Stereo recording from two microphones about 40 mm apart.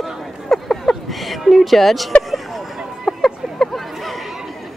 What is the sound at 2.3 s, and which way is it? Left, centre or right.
Hubbub, centre.